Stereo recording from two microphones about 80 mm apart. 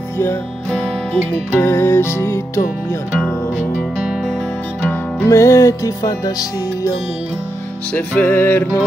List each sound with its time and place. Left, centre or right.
0.7 s music: centre
1.6 s music: left
5.2 s music: left
7.9 s music: centre